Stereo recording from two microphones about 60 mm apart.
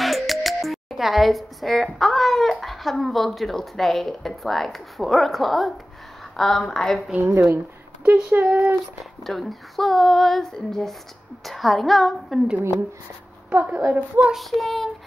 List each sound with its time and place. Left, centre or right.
0.0 s speech: centre
7.2 s speech: right
8.0 s speech: right
9.2 s speech: centre
13.5 s speech: right
14.3 s speech: centre